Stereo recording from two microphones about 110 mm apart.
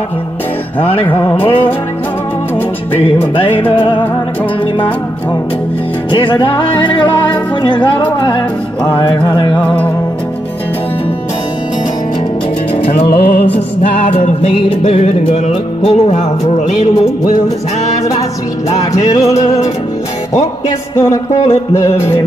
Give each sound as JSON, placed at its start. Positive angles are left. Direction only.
{"t": 3.7, "sound": "music", "side_deg": 50}
{"t": 6.1, "sound": "music", "side_deg": 45}
{"t": 9.6, "sound": "music", "side_deg": 15}
{"t": 13.2, "sound": "music", "side_deg": 65}
{"t": 19.2, "sound": "music", "side_deg": 90}
{"t": 20.9, "sound": "music", "side_deg": 25}